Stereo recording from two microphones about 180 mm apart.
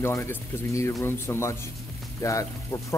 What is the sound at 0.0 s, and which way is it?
Speech, 10° left (ahead or behind).